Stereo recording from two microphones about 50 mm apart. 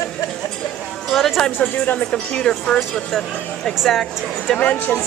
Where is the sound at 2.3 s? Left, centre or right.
Centre.